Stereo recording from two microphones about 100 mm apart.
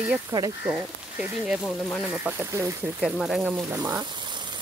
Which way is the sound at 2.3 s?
30° right (ahead or behind).